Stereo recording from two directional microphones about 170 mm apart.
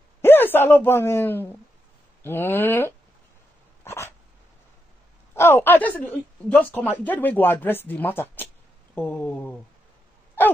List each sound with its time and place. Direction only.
0.2 s a woman's voice: 10° left (ahead or behind)
3.8 s dog: 15° left (ahead or behind)
5.3 s a woman's voice: 15° left (ahead or behind)